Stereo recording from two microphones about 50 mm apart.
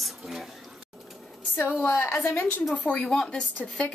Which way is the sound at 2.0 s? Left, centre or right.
Left.